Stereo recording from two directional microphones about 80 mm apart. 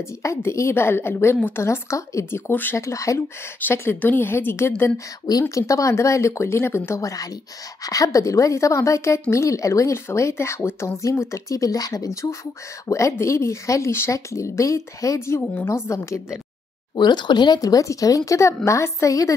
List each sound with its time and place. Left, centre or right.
0.2 s speech: left
2.8 s speech: left
3.6 s a woman's voice: left
16.9 s speech: left
17.6 s a woman's voice: left